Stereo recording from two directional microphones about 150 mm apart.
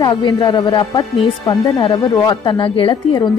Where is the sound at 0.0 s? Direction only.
30° left (ahead or behind).